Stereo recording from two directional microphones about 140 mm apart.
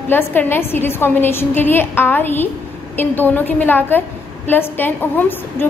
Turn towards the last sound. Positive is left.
turn(degrees=15)  # may be behind; listen again after turning